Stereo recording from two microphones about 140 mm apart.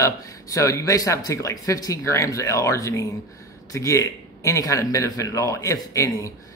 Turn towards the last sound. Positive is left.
turn(degrees=20)  # may be behind; listen again after turning